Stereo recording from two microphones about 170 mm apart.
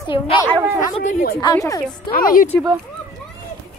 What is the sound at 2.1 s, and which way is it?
Speech, 55° left (ahead or behind).